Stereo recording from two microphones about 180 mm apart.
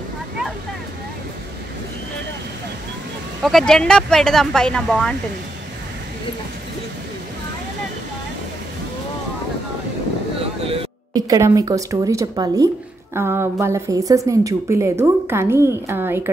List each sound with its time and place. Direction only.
3.4 s speech: centre (ahead or behind)
10.6 s music: 30° right (ahead or behind)
11.1 s a woman's voice: 20° right (ahead or behind)